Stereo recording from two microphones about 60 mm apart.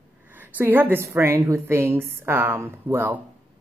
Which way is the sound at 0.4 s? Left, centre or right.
Right.